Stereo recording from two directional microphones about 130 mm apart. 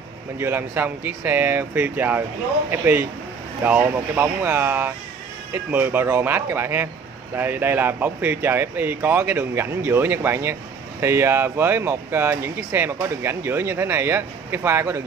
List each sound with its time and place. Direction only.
0.4 s speech: 20° right (ahead or behind)